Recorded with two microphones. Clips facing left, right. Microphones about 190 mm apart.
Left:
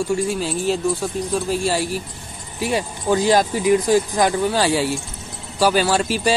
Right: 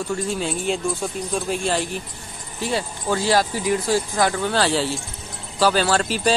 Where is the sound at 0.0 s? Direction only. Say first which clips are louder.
Left 4 dB; 10° left (ahead or behind).